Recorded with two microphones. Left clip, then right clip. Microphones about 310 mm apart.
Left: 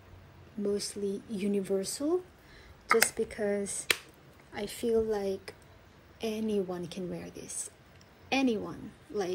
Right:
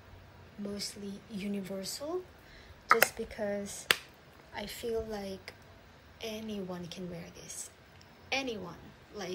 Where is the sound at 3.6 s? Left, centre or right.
Centre.